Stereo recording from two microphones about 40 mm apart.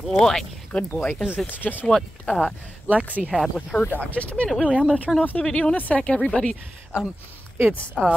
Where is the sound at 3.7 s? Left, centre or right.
Left.